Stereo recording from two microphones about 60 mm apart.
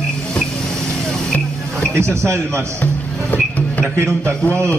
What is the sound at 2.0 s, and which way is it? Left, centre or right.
Speech, right.